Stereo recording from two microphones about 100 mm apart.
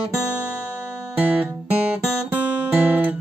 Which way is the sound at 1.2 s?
15° right (ahead or behind).